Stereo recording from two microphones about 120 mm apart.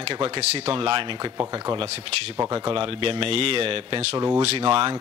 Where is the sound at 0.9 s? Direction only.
45° right (ahead or behind).